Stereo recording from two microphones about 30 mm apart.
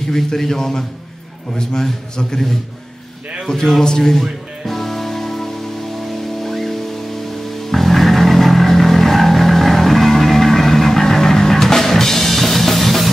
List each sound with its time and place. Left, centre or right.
0.1 s a man's voice: centre
3.5 s a man's voice: left
4.6 s music: centre